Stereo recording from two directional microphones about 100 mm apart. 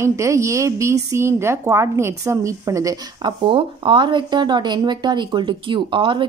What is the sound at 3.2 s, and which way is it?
Speech, 55° right (ahead or behind).